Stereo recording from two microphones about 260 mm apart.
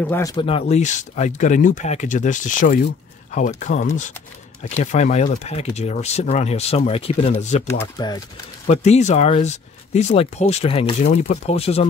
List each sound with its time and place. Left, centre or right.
0.0 s speech: centre; by 7.6 s left
7.8 s speech: centre